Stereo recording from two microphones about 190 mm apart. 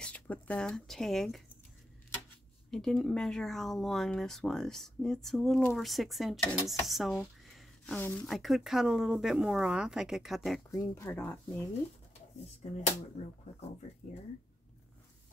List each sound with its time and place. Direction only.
0.0 s speech: 5° left (ahead or behind)
2.7 s speech: centre (ahead or behind)
10.7 s speech: 15° left (ahead or behind)
12.6 s speech: 30° left (ahead or behind)